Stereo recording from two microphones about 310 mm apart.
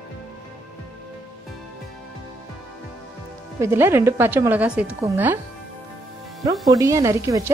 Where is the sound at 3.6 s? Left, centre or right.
Centre.